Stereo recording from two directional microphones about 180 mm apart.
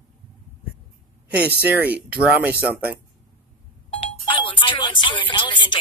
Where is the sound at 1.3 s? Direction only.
10° right (ahead or behind).